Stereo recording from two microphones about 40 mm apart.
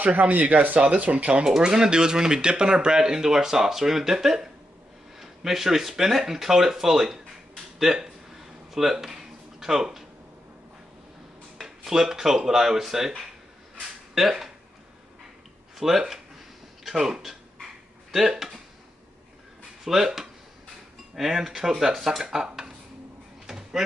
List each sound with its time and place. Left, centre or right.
0.0 s speech: right; by 7.2 s centre
7.8 s a sound: centre
9.6 s speech: centre
11.6 s speech: centre
14.1 s speech: centre
15.8 s speech: centre
19.8 s speech: centre
23.4 s a sound: centre